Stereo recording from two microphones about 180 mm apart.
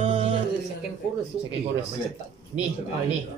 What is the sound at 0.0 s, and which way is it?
Music, 30° right (ahead or behind).